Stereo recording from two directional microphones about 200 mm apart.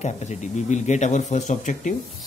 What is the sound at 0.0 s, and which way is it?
Speech, 35° left (ahead or behind).